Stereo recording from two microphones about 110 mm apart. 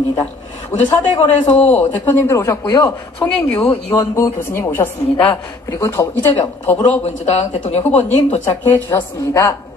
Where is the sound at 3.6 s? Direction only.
25° left (ahead or behind).